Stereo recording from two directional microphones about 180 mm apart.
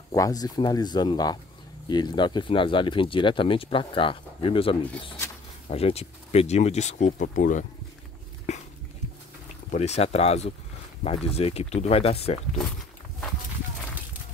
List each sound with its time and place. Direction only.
0.1 s speech: 20° left (ahead or behind); by 7.6 s 45° left (ahead or behind)
8.5 s dog: 40° left (ahead or behind)
9.7 s speech: 40° left (ahead or behind)